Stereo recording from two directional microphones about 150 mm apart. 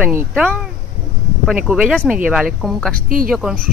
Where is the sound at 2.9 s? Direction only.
70° right (ahead or behind).